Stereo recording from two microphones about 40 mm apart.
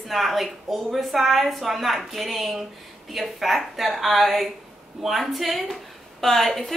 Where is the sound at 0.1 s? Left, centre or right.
Centre.